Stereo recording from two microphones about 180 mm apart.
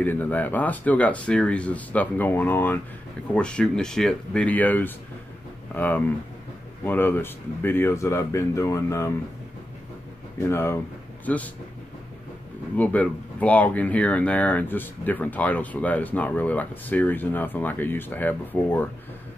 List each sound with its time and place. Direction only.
0.0 s speech: 10° left (ahead or behind)
10.4 s speech: 15° left (ahead or behind)
12.7 s speech: 10° left (ahead or behind)